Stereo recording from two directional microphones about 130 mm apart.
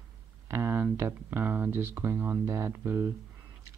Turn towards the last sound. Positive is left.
turn(degrees=-20)  # may be behind; listen again after turning